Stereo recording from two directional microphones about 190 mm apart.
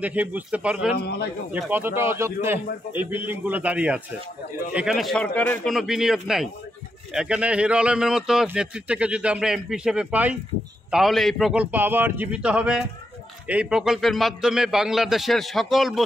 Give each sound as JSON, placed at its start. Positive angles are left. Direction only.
{"t": 0.0, "sound": "speech", "side_deg": -10}
{"t": 0.9, "sound": "a man's voice", "side_deg": 55}
{"t": 1.5, "sound": "a man's voice", "side_deg": -10}